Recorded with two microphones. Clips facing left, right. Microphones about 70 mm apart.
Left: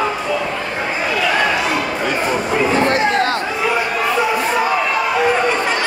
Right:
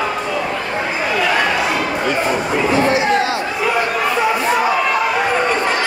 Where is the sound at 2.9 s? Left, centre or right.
Left.